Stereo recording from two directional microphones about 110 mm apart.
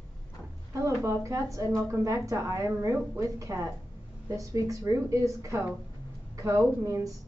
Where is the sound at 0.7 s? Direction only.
30° right (ahead or behind).